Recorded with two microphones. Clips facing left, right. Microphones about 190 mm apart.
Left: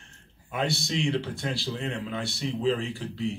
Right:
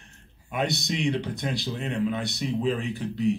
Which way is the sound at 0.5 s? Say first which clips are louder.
Right 1 dB; 20° right (ahead or behind).